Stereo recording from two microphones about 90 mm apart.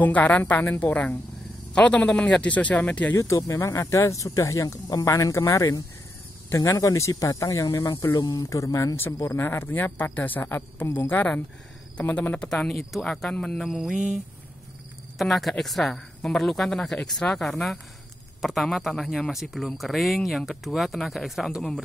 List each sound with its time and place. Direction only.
0.0 s speech: 15° left (ahead or behind)
3.2 s speech: 35° left (ahead or behind); by 21.6 s 5° right (ahead or behind)